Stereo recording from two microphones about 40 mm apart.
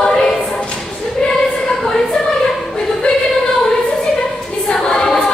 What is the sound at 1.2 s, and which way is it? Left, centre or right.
Choir, left.